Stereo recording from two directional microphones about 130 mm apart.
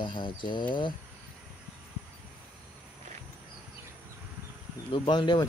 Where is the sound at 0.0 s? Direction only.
40° left (ahead or behind).